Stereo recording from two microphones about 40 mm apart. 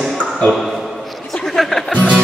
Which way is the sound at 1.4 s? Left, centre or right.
Centre.